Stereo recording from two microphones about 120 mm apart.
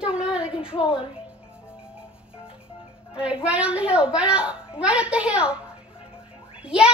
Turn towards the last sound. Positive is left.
turn(degrees=-10)  # may be behind; listen again after turning